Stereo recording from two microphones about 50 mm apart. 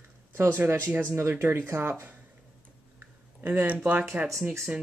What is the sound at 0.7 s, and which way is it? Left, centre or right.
Speech, right.